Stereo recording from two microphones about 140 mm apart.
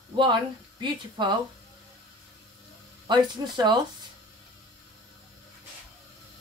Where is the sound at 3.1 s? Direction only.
30° right (ahead or behind).